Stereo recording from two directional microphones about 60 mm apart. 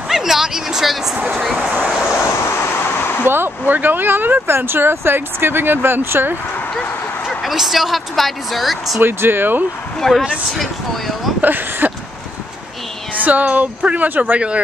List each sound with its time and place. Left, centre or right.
0.1 s a sound: centre
1.2 s a woman's voice: centre
2.6 s a sound: left
3.3 s speech: right
7.2 s a woman's voice: centre
9.0 s speech: right
9.9 s a woman's voice: centre
11.4 s speech: right
13.1 s speech: right